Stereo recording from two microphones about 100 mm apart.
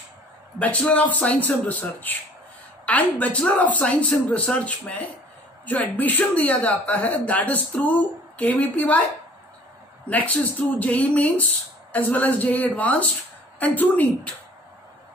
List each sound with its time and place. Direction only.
0.6 s speech: 15° left (ahead or behind)
10.0 s speech: 15° left (ahead or behind)